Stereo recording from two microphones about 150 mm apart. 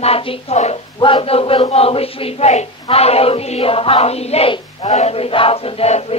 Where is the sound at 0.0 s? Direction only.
40° left (ahead or behind).